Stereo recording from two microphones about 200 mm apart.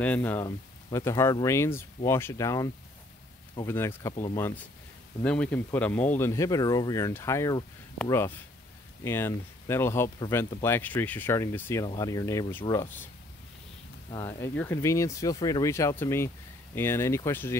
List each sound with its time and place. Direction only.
0.0 s speech: 10° left (ahead or behind)
4.1 s speech: 30° left (ahead or behind)
5.2 s speech: 5° left (ahead or behind); by 10.6 s 20° left (ahead or behind)
10.6 s speech: 10° left (ahead or behind)
14.1 s speech: 15° left (ahead or behind)